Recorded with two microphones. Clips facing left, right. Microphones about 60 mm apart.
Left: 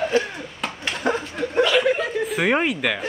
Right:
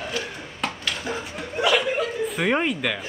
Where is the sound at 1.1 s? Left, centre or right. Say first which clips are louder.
Left 9 dB; left.